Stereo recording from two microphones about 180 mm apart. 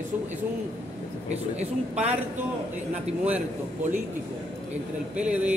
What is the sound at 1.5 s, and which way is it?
Speech, 40° right (ahead or behind).